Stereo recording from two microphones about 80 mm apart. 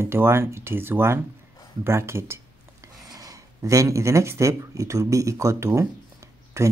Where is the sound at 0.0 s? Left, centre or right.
Right.